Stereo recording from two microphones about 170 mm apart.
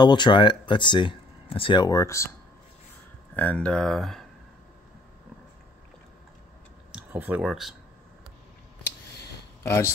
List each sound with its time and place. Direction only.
0.0 s speech: 25° left (ahead or behind)
3.3 s speech: 10° left (ahead or behind)
6.9 s speech: 10° right (ahead or behind)
9.6 s a sound: 15° left (ahead or behind)